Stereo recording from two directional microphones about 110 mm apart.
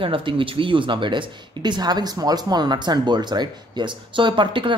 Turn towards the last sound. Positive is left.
turn(degrees=-50)  # may be behind; listen again after turning